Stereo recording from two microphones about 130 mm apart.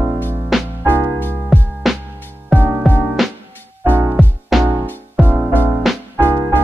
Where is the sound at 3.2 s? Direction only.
Centre (ahead or behind).